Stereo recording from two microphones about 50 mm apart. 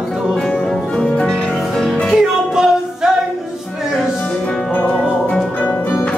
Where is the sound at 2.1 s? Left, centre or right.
Centre.